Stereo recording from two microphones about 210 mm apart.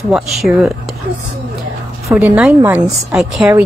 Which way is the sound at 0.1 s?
Centre (ahead or behind).